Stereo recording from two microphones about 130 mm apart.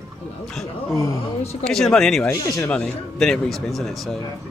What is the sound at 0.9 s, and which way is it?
Speech, 25° left (ahead or behind).